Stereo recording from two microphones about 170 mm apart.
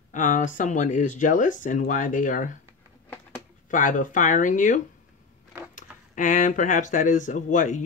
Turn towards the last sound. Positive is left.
turn(degrees=45)  # may be behind; listen again after turning